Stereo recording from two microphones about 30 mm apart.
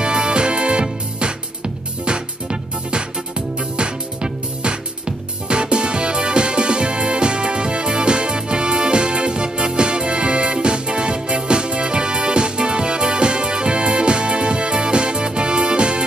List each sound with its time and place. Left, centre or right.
0.0 s music: right